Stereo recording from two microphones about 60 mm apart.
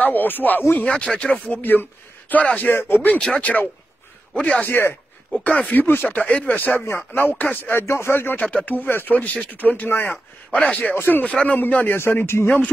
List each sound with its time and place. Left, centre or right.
0.0 s speech: left
0.8 s speech: centre
1.5 s speech: left
2.7 s speech: left
3.2 s a man's voice: centre
4.6 s speech: left
5.4 s speech: left
7.7 s speech: left
8.4 s speech: left
11.0 s speech: left
12.0 s speech: left